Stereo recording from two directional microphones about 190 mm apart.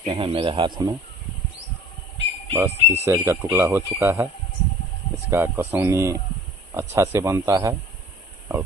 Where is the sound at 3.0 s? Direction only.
15° right (ahead or behind).